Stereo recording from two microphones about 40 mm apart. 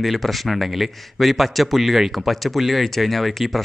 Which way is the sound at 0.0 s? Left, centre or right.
Centre.